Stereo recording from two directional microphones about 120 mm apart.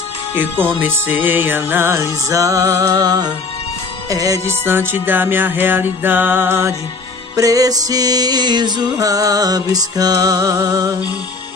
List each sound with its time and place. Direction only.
0.4 s music: 15° right (ahead or behind)
4.6 s music: 20° right (ahead or behind)
7.3 s music: 30° right (ahead or behind)